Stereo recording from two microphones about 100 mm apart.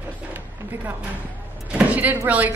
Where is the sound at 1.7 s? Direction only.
10° right (ahead or behind).